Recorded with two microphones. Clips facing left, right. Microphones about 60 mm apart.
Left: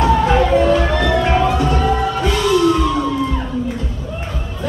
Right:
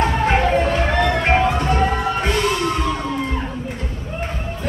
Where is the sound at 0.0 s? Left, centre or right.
Right.